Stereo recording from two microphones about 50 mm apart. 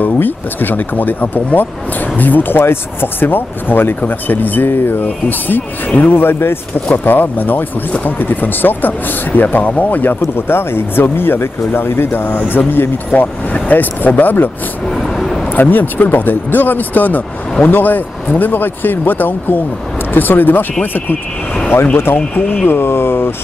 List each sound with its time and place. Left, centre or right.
0.0 s speech: left
2.6 s speech: left
5.9 s speech: left
10.3 s speech: left
14.9 s vehicle: centre
15.5 s speech: left
21.9 s speech: left